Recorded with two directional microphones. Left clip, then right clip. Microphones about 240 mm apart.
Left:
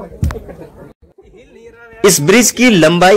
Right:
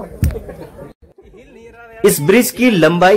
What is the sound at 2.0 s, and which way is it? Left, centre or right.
Speech, centre.